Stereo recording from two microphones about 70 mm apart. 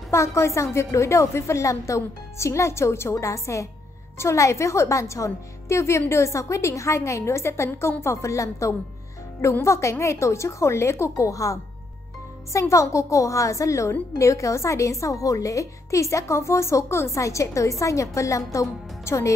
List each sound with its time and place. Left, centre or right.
0.1 s a woman's voice: left